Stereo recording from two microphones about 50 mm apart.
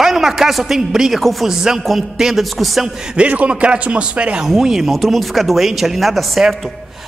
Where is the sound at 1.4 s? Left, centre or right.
Centre.